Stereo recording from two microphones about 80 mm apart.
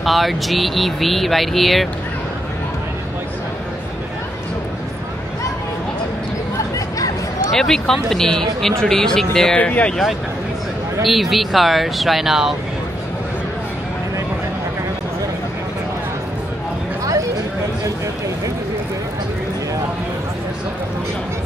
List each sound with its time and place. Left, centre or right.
0.0 s speech: centre
7.5 s speech: centre
9.6 s speech: centre
11.1 s speech: centre